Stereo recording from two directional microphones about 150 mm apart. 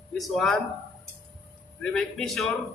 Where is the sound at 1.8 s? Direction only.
5° left (ahead or behind).